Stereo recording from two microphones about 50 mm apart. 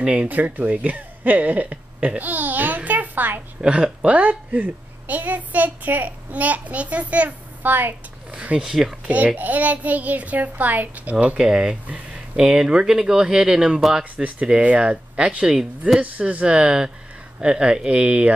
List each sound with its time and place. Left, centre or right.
0.0 s speech: centre
0.3 s speech: right
3.6 s a child's voice: right
8.3 s speech: right
9.0 s a child's voice: right
11.3 s speech: centre
14.6 s speech: right
16.5 s speech: centre